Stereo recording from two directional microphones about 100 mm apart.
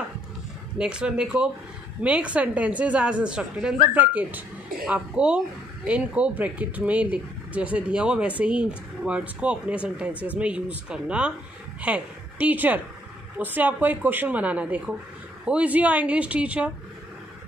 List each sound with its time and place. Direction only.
0.7 s a woman's voice: 10° right (ahead or behind)